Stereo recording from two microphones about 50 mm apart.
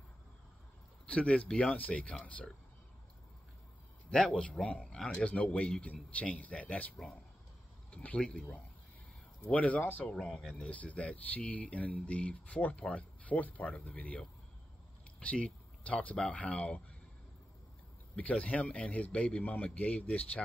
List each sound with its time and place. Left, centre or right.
1.0 s speech: left
4.3 s speech: left
7.9 s speech: left
10.1 s speech: centre
10.5 s speech: left
15.4 s speech: left
18.1 s speech: left